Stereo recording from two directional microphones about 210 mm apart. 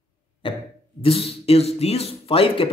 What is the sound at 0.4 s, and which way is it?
Speech, 25° left (ahead or behind).